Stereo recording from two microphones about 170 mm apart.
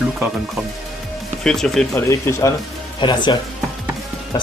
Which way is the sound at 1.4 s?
5° left (ahead or behind).